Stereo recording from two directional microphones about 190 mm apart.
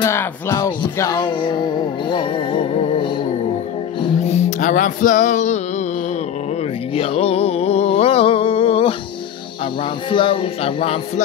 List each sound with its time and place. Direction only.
0.0 s music: 15° left (ahead or behind); by 5.6 s 40° left (ahead or behind)
6.9 s music: 30° left (ahead or behind)
10.0 s speech: 25° left (ahead or behind)